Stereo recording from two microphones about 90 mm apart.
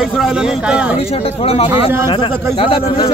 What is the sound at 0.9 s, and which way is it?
Speech, 90° left.